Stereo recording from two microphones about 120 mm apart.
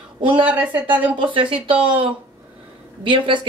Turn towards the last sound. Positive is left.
turn(degrees=-45)  # may be behind; listen again after turning